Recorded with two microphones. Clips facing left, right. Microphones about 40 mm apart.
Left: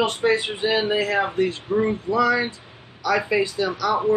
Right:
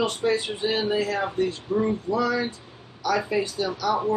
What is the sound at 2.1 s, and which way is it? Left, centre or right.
Speech, left.